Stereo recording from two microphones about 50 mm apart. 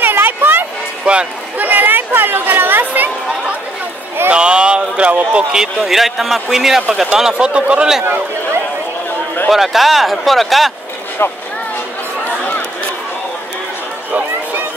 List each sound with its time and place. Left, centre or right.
0.0 s a sound: right
1.1 s speech: right
1.6 s speech: right
4.3 s speech: centre
5.5 s a man's voice: centre
9.5 s speech: centre